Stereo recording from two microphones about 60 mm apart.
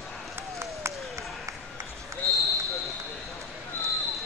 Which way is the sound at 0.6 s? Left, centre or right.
Right.